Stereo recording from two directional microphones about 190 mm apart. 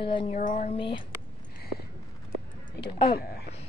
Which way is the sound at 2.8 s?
30° left (ahead or behind).